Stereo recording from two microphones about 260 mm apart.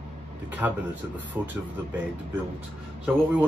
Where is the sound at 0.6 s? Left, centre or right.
Centre.